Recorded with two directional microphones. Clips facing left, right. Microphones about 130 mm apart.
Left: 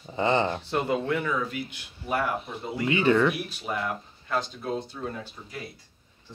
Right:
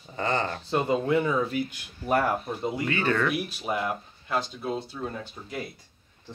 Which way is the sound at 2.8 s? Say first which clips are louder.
Left 6 dB; 20° left (ahead or behind).